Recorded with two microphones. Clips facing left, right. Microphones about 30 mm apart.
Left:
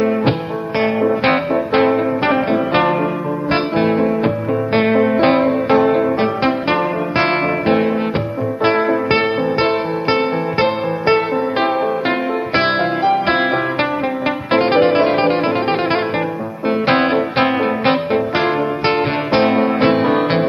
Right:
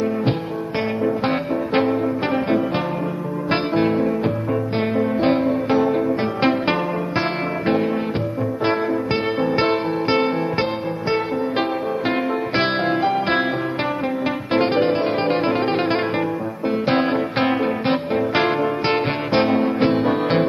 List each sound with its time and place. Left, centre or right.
1.7 s music: left
3.5 s music: left
4.7 s music: left
7.2 s music: left
9.4 s music: centre
10.6 s music: left
12.5 s music: centre
14.7 s music: left
15.3 s music: centre
16.8 s music: left
18.3 s music: centre
18.9 s music: centre
19.4 s music: left
20.1 s music: left